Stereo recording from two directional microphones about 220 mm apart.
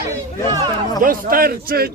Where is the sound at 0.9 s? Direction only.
40° right (ahead or behind).